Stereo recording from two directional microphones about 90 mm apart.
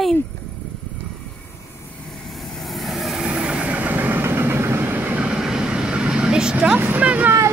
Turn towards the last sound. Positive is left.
turn(degrees=-15)  # may be behind; listen again after turning